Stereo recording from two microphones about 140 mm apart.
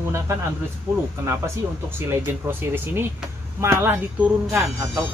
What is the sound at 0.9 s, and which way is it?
Speech, 15° right (ahead or behind).